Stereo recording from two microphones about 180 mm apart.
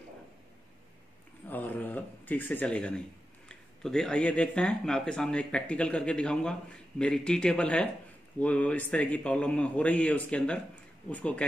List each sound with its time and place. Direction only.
1.5 s a man's voice: 10° left (ahead or behind)